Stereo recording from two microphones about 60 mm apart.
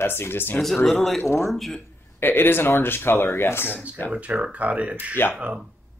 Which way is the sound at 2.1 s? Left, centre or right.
Left.